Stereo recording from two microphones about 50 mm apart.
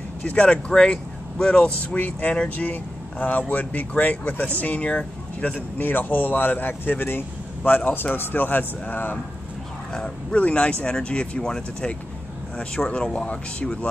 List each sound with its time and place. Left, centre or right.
0.2 s speech: left
5.8 s speech: left
10.3 s speech: left